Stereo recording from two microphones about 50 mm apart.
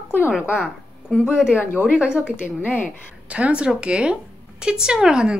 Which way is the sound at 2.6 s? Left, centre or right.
Left.